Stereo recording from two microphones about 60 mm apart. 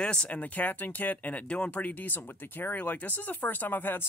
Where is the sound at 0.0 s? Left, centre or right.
Centre.